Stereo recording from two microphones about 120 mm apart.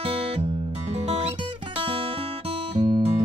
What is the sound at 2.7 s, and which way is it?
Guitar, 50° right (ahead or behind).